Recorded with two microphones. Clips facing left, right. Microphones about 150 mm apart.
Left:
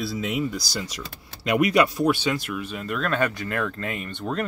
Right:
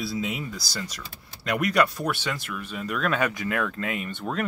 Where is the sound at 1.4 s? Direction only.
15° left (ahead or behind).